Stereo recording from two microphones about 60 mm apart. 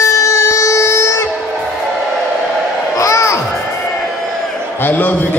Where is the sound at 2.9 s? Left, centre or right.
Left.